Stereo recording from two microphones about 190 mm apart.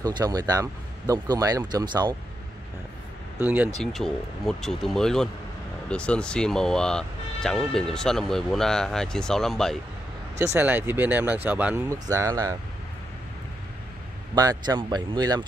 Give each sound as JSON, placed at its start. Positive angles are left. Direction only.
{"t": 0.0, "sound": "speech", "side_deg": -20}
{"t": 3.4, "sound": "speech", "side_deg": -10}
{"t": 10.4, "sound": "speech", "side_deg": -10}
{"t": 14.3, "sound": "speech", "side_deg": -20}